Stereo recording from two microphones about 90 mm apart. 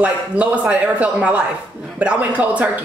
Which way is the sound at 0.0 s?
15° right (ahead or behind).